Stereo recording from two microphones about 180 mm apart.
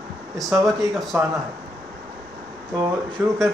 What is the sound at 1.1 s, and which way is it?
Speech, 10° right (ahead or behind).